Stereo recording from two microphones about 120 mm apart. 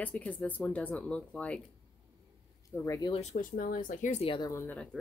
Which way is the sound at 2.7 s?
25° left (ahead or behind).